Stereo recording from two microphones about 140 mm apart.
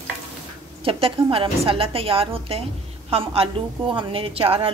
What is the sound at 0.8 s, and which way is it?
A woman's voice, 40° right (ahead or behind).